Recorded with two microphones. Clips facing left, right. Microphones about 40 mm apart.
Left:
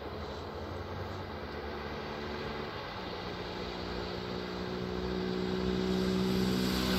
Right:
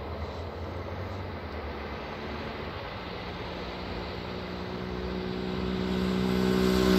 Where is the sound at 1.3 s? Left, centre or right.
Centre; by 6.9 s right.